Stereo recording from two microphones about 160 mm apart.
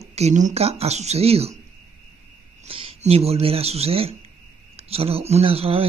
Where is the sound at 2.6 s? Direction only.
35° right (ahead or behind).